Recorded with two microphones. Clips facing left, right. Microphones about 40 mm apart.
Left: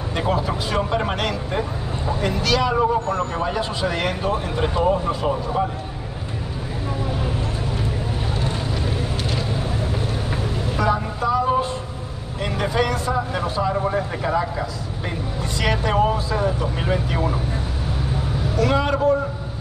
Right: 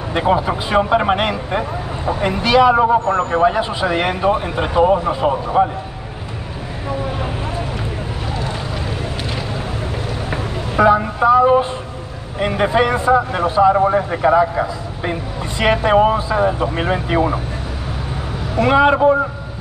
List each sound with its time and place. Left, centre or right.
0.1 s speech: right
10.3 s vehicle: right
12.4 s speech: right
18.6 s speech: right